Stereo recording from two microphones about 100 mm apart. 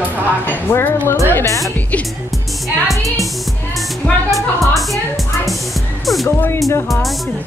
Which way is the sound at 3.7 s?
Centre (ahead or behind).